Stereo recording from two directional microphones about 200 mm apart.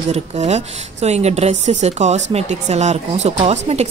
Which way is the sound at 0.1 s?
35° right (ahead or behind).